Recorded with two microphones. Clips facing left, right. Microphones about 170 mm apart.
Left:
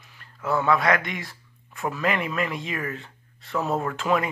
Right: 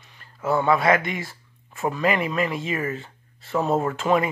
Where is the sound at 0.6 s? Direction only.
5° right (ahead or behind).